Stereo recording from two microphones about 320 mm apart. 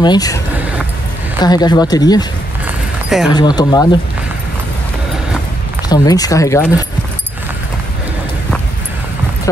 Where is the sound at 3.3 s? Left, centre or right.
Centre.